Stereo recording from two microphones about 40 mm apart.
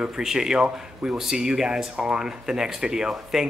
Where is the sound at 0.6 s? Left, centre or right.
Right.